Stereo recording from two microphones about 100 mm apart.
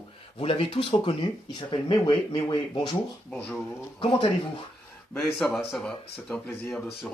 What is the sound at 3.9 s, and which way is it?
Speech, 55° left (ahead or behind).